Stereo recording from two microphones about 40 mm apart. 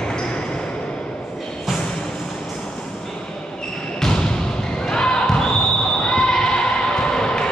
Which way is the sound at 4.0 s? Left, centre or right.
Centre.